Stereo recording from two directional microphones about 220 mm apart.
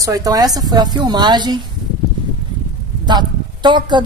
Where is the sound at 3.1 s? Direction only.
20° right (ahead or behind).